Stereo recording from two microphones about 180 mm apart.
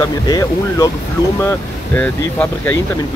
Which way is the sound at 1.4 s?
10° left (ahead or behind).